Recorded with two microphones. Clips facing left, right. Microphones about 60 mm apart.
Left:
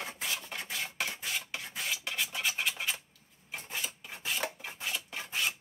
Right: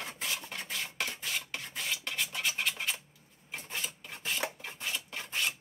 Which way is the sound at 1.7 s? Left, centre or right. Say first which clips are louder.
Even; centre.